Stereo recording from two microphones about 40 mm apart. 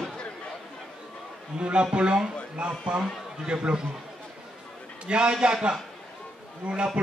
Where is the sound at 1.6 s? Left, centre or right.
Right.